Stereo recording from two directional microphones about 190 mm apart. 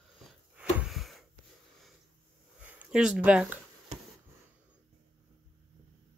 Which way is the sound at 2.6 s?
10° right (ahead or behind).